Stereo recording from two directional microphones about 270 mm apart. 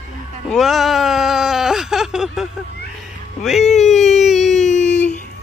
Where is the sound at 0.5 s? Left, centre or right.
Centre.